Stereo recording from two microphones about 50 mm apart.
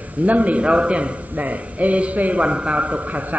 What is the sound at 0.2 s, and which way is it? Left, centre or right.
A man's voice, right.